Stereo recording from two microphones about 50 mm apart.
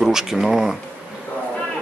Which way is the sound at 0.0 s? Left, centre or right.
Centre.